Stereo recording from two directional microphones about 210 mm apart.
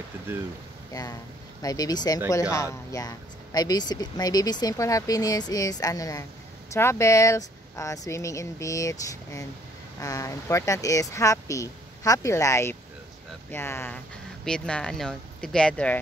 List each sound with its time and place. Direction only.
0.9 s speech: 20° left (ahead or behind)